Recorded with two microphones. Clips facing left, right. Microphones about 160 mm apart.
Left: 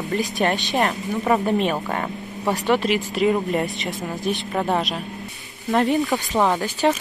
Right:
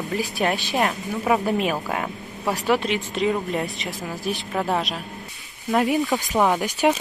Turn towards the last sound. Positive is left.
turn(degrees=-15)  # may be behind; listen again after turning